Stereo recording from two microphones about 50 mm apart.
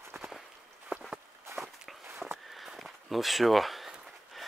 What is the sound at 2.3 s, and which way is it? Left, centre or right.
Walk, centre.